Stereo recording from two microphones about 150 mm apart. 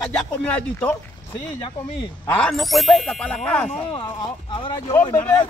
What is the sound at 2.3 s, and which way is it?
Ding, 5° left (ahead or behind).